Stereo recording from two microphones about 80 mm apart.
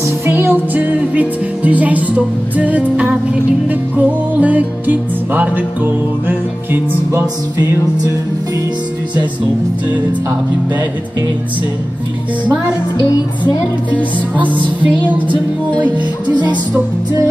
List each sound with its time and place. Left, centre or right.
0.0 s music: right
14.8 s music: centre